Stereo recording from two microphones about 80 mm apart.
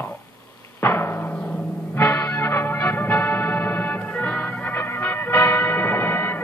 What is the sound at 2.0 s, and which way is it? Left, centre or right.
Music, left.